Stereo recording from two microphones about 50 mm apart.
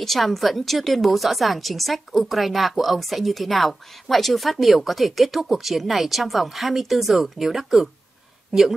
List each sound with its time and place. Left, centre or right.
0.0 s a woman's voice: centre